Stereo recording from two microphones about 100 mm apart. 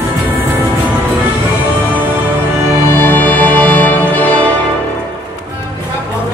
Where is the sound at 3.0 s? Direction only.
15° left (ahead or behind).